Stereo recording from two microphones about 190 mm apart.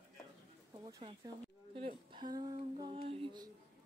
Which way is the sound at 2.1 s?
20° right (ahead or behind).